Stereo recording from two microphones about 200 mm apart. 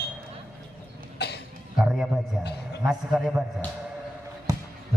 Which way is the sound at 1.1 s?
55° left (ahead or behind).